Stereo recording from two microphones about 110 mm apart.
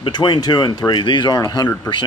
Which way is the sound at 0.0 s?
45° left (ahead or behind).